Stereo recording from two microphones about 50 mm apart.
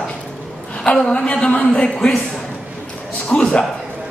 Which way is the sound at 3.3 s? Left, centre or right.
Left.